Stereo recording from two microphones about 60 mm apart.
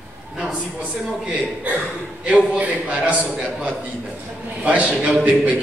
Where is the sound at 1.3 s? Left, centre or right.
Right.